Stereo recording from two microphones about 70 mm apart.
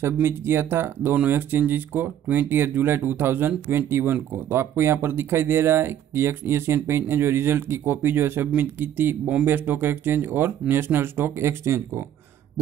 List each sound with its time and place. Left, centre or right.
0.0 s speech: right